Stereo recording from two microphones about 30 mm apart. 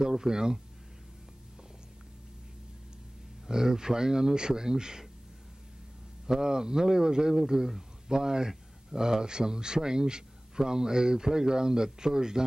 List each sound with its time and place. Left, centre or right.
0.0 s speech: centre
3.4 s speech: right
6.2 s speech: right